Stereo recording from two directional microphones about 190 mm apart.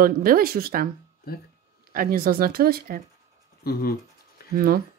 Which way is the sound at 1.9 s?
50° right (ahead or behind).